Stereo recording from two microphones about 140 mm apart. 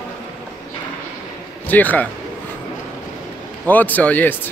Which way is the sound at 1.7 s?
10° left (ahead or behind).